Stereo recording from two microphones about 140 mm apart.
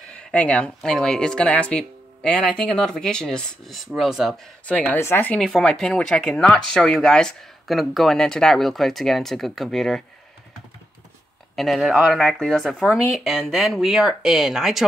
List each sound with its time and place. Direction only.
0.1 s speech: 5° left (ahead or behind)
4.6 s a woman's voice: 10° left (ahead or behind)
5.4 s speech: 5° left (ahead or behind)
11.5 s speech: centre (ahead or behind)